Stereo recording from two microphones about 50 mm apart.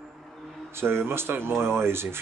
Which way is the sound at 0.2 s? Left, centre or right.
Centre.